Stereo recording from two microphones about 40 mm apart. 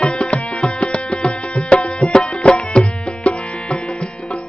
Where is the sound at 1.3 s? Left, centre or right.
Left.